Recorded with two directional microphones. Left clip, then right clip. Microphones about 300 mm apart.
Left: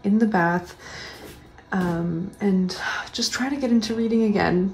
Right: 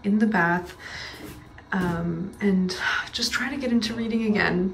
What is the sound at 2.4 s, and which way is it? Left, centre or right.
A woman's voice, centre.